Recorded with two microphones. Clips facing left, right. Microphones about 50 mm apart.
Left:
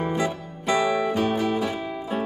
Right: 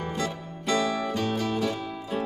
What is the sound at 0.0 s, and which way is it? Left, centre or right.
Music, centre.